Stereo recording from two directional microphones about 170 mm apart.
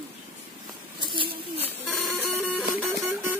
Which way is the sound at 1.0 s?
30° right (ahead or behind).